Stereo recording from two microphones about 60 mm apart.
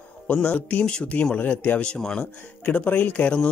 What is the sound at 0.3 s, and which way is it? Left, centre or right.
Speech, left.